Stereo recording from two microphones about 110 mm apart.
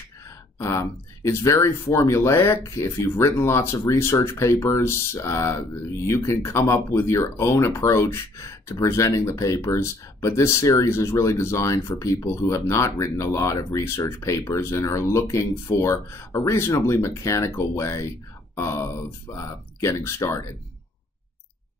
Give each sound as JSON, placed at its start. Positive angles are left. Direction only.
{"t": 0.6, "sound": "speech", "side_deg": 25}